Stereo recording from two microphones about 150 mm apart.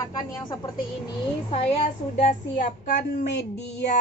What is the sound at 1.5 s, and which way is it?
A woman's voice, 45° left (ahead or behind).